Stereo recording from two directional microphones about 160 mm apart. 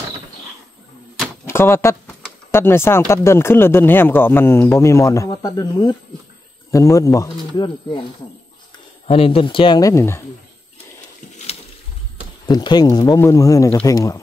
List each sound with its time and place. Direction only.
1.5 s speech: 15° left (ahead or behind)
9.0 s speech: 35° left (ahead or behind); by 10.2 s 15° left (ahead or behind)
12.4 s speech: 25° left (ahead or behind)